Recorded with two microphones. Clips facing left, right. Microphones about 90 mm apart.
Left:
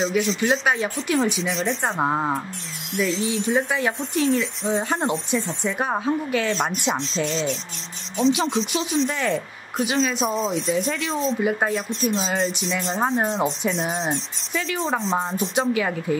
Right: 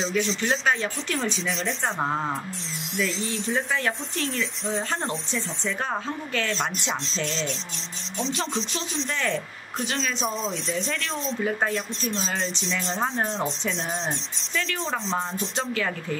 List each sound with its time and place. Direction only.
0.0 s speech: 5° left (ahead or behind)
2.0 s speech: 20° left (ahead or behind)
2.9 s speech: 5° left (ahead or behind)